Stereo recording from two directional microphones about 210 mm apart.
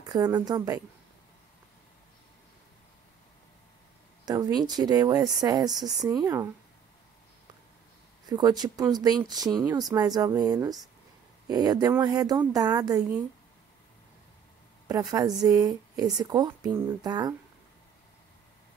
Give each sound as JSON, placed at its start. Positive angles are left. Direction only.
{"t": 0.0, "sound": "speech", "side_deg": -20}
{"t": 4.3, "sound": "speech", "side_deg": -20}
{"t": 5.8, "sound": "speech", "side_deg": 0}
{"t": 8.3, "sound": "speech", "side_deg": -20}
{"t": 14.9, "sound": "speech", "side_deg": -20}